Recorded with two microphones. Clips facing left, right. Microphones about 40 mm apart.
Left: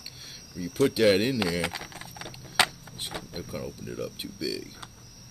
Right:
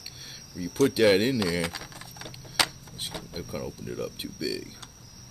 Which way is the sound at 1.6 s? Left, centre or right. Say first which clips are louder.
Left 1 dB; left.